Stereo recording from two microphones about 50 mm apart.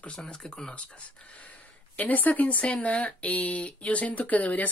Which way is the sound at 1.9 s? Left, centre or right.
Left.